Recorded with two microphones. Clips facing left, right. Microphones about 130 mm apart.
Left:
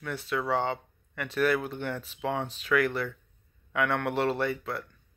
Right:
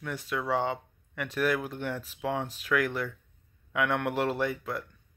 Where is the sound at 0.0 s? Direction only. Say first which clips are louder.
Left 2 dB; 10° right (ahead or behind).